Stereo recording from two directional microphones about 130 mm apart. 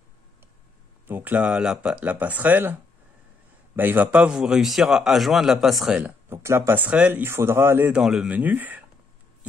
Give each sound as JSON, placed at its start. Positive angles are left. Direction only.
{"t": 1.0, "sound": "a man's voice", "side_deg": -15}
{"t": 5.9, "sound": "speech", "side_deg": -15}
{"t": 7.9, "sound": "speech", "side_deg": -5}